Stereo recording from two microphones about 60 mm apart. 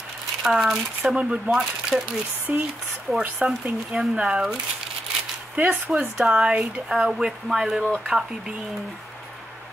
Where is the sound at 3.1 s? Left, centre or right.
Centre.